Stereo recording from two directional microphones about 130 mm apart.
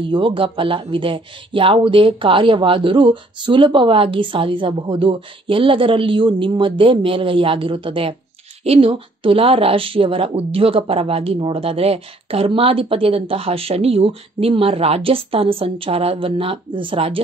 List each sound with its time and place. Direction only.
0.1 s a woman's voice: 40° right (ahead or behind)